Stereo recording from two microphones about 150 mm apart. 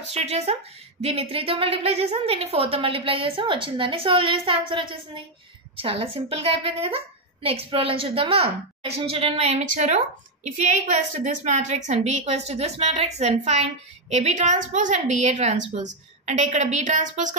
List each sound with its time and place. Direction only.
0.1 s a woman's voice: 45° right (ahead or behind)
11.2 s a woman's voice: 50° right (ahead or behind)